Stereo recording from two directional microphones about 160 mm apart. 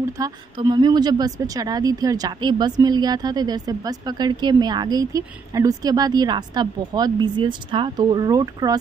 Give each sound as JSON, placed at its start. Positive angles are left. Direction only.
{"t": 0.2, "sound": "a woman's voice", "side_deg": -25}